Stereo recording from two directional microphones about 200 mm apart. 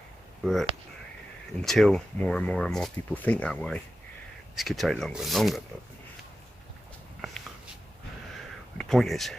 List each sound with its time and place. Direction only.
0.4 s speech: centre (ahead or behind)
8.7 s speech: centre (ahead or behind)